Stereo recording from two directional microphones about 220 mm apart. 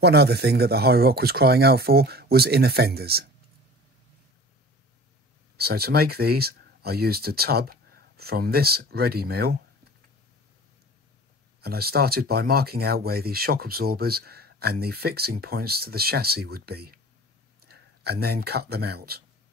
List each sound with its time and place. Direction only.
0.0 s speech: 50° right (ahead or behind)
5.6 s speech: 45° right (ahead or behind)
11.6 s speech: 45° right (ahead or behind)